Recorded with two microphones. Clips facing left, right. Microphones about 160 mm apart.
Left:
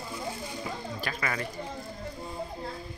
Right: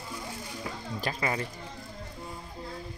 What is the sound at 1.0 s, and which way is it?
Speech, 25° right (ahead or behind).